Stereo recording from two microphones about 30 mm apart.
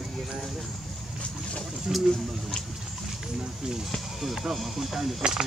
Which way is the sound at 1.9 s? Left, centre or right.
Centre.